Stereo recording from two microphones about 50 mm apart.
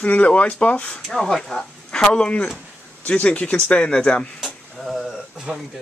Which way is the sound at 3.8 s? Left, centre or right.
Centre.